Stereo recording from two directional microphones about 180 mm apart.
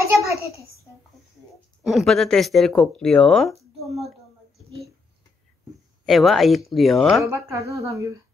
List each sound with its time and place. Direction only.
0.2 s speech: 15° right (ahead or behind)
1.8 s speech: centre (ahead or behind)
6.0 s speech: centre (ahead or behind)
7.2 s speech: 15° right (ahead or behind)